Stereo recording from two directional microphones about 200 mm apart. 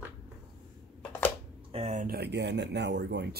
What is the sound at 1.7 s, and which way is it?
Speech, 35° right (ahead or behind).